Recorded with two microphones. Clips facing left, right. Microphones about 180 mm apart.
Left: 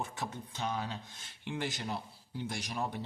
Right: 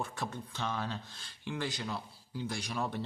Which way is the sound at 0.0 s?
20° left (ahead or behind).